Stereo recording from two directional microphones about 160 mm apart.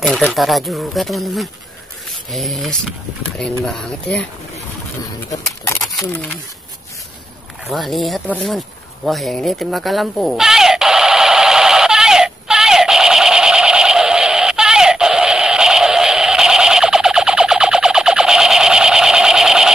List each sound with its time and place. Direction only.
0.0 s speech: 5° left (ahead or behind)
5.3 s speech: 20° left (ahead or behind)
7.6 s a sound: centre (ahead or behind)